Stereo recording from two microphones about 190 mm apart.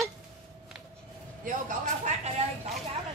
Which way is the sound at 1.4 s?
40° right (ahead or behind).